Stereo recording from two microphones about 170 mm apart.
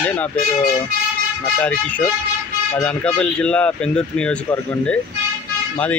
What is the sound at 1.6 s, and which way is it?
Speech, 10° left (ahead or behind).